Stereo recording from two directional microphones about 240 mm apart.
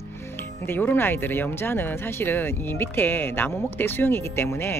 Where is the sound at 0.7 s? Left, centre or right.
Centre.